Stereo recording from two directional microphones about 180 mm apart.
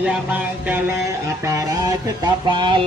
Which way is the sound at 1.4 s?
15° right (ahead or behind).